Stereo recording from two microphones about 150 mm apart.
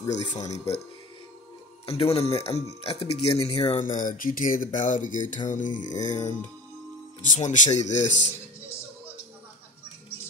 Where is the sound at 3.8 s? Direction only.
60° left (ahead or behind).